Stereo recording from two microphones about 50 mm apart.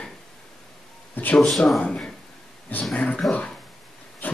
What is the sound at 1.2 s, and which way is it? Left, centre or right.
Speech, left.